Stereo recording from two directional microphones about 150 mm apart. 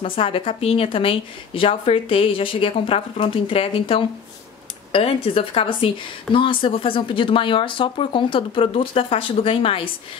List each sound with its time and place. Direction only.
0.0 s a woman's voice: 35° left (ahead or behind)